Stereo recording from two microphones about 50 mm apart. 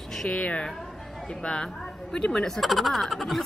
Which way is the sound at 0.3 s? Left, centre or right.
Left.